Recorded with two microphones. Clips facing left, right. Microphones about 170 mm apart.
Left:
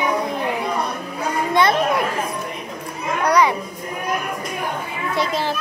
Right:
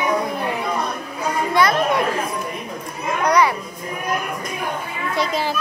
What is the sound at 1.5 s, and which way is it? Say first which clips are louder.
Speech: left 1 dB; 25° left (ahead or behind).